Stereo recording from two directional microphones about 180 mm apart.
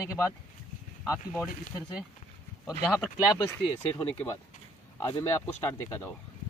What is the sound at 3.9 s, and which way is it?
Speech, 15° left (ahead or behind).